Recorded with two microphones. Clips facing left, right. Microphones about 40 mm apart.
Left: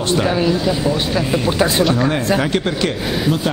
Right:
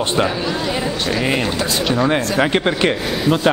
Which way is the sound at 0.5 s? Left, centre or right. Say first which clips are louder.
Left 4 dB; centre.